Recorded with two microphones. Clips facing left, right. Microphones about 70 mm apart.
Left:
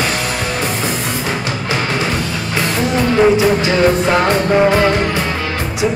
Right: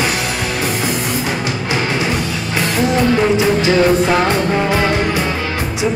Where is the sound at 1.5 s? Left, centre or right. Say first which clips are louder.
Even; right.